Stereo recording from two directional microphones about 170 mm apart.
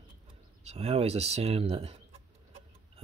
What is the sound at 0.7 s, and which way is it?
Speech, 35° right (ahead or behind).